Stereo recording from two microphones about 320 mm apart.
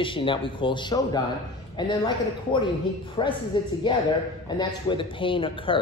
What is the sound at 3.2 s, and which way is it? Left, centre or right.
A man's voice, centre.